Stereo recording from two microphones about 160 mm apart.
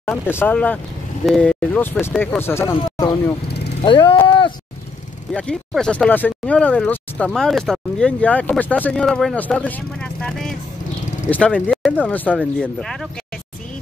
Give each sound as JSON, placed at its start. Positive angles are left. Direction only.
{"t": 0.0, "sound": "speech", "side_deg": 15}
{"t": 5.3, "sound": "speech", "side_deg": 5}